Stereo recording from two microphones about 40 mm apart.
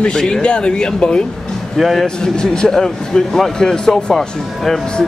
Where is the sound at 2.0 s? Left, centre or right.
Left.